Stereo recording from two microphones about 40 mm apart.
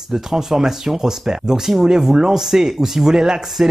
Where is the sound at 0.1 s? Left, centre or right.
Centre.